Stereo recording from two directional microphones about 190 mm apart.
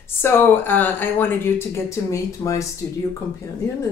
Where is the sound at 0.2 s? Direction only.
10° left (ahead or behind).